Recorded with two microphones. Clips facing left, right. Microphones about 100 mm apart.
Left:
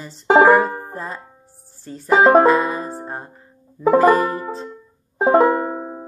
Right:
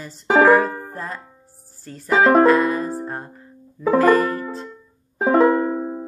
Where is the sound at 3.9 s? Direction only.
10° left (ahead or behind).